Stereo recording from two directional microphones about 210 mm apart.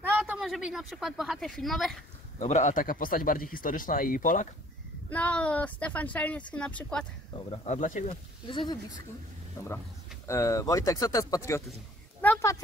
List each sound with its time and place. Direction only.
0.1 s a woman's voice: 5° right (ahead or behind)
2.3 s speech: 35° left (ahead or behind)
5.1 s speech: 5° left (ahead or behind)
7.5 s speech: 35° left (ahead or behind)
8.1 s speech: 25° left (ahead or behind)
12.2 s a sound: 10° left (ahead or behind)